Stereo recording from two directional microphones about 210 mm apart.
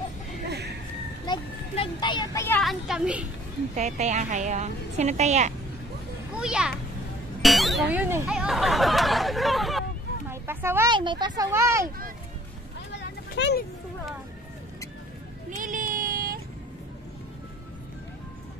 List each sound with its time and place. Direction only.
0.5 s a sound: 50° right (ahead or behind)
1.2 s a sound: 20° left (ahead or behind)
2.4 s a child's voice: 5° left (ahead or behind)
3.7 s a woman's voice: 35° right (ahead or behind)
6.3 s a child's voice: 5° right (ahead or behind)
7.4 s music: centre (ahead or behind)
7.9 s speech: 10° right (ahead or behind)
10.3 s speech: 10° right (ahead or behind)
12.9 s vehicle: 55° left (ahead or behind)
15.5 s child singing: 40° right (ahead or behind)